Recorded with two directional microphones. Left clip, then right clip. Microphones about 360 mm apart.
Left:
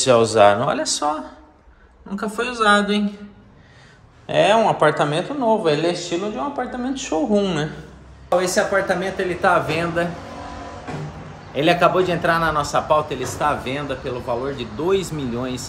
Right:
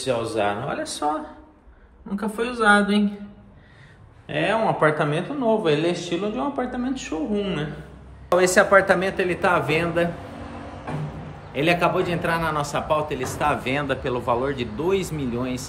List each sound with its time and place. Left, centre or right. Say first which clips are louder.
0.0 s speech: left 10 dB; centre
2.1 s a man's voice: left 3 dB; centre
4.3 s a man's voice: left 6 dB; centre
8.3 s a man's voice: right 2 dB; centre
11.5 s speech: left 4 dB; centre